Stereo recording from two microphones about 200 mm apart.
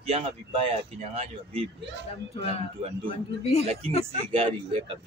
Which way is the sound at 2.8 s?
30° right (ahead or behind).